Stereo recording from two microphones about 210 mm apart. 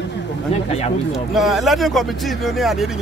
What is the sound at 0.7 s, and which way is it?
Speech, 30° left (ahead or behind).